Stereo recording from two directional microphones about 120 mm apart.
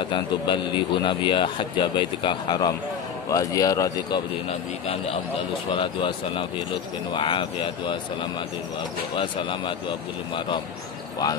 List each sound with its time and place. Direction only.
0.0 s speech: 40° left (ahead or behind)
4.5 s a man's voice: 60° left (ahead or behind)
5.7 s speech: 45° left (ahead or behind)